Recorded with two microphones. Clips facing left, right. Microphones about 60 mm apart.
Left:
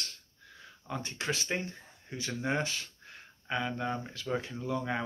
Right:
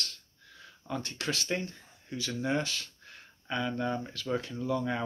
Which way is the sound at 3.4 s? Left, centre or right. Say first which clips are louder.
Right 1 dB; centre.